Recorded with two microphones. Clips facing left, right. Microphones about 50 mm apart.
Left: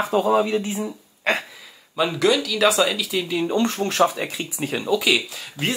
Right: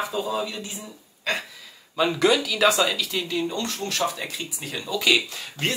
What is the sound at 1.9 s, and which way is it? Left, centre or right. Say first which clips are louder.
Speech: left 1 dB; centre.